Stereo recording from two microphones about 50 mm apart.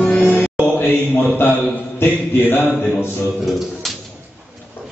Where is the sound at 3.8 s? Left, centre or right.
Centre.